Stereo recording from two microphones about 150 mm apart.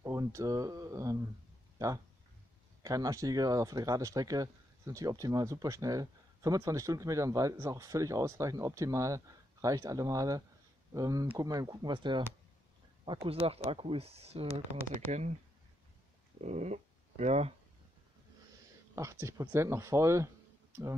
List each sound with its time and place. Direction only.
0.0 s speech: 20° right (ahead or behind)
2.8 s speech: 25° right (ahead or behind); by 15.3 s 50° right (ahead or behind)
16.3 s speech: 50° right (ahead or behind)
18.9 s speech: 20° right (ahead or behind)